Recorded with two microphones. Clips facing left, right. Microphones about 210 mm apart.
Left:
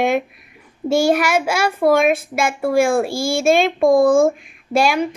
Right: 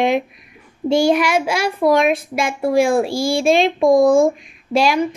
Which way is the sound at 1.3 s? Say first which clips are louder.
Even; 50° left (ahead or behind).